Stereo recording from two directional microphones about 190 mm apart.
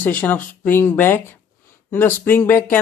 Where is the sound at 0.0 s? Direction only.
10° left (ahead or behind).